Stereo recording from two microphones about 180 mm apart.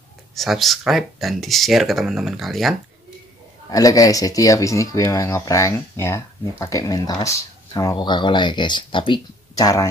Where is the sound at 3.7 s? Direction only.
20° left (ahead or behind).